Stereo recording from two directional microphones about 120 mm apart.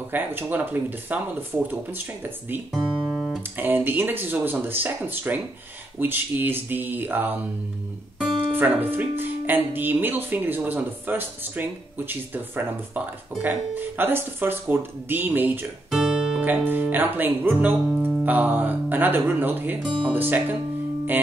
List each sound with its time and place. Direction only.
0.1 s speech: 15° right (ahead or behind)
2.7 s music: 5° right (ahead or behind)
3.5 s speech: 15° right (ahead or behind)
8.5 s speech: 15° right (ahead or behind)
15.9 s music: 5° right (ahead or behind)
16.4 s speech: 15° right (ahead or behind)